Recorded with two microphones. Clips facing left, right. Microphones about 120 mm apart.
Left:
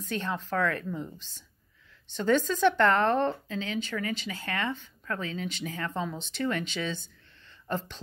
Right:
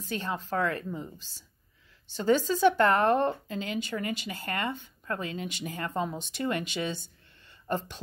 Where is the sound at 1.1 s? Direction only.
40° right (ahead or behind).